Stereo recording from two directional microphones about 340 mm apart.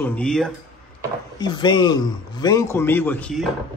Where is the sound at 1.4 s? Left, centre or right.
Centre.